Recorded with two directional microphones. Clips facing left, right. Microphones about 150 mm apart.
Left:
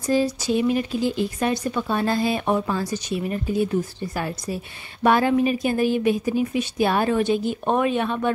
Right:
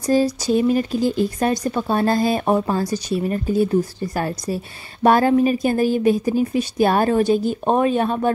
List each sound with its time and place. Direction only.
0.0 s speech: 40° right (ahead or behind)